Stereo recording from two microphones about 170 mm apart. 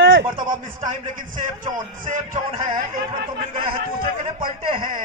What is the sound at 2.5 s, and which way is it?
Speech, 30° right (ahead or behind).